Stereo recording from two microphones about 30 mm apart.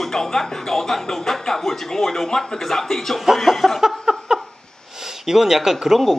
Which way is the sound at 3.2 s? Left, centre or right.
Centre.